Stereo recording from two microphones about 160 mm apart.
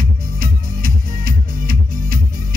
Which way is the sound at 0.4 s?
60° right (ahead or behind).